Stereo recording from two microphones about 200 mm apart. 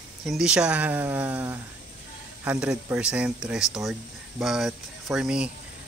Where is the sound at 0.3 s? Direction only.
5° right (ahead or behind).